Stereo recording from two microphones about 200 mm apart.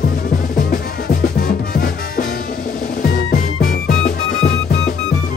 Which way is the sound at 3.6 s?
45° left (ahead or behind).